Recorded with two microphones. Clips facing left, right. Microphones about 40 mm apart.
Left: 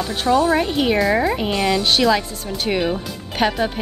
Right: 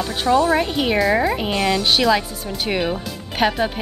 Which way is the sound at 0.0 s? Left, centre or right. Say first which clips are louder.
Even; centre.